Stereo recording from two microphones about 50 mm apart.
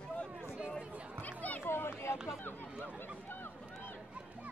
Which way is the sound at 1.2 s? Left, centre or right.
Left.